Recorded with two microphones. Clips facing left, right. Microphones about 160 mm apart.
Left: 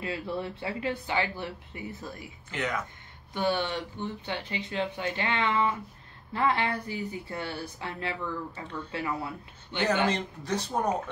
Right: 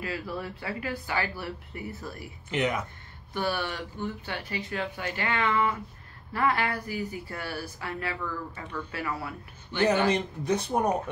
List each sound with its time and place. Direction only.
0.0 s speech: 25° left (ahead or behind)
2.5 s speech: 20° right (ahead or behind)
3.3 s speech: 20° left (ahead or behind)
10.0 s speech: 15° right (ahead or behind)